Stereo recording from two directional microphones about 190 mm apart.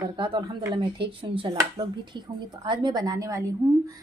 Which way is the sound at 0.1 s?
25° right (ahead or behind).